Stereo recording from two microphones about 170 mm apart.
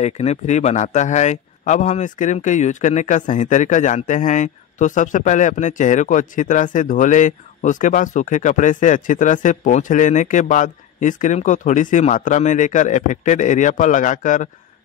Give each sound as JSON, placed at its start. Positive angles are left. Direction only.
{"t": 0.0, "sound": "speech", "side_deg": 40}